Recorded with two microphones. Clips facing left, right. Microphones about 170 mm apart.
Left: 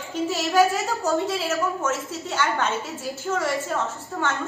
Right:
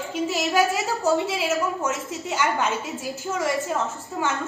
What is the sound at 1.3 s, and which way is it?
Speech, 15° right (ahead or behind).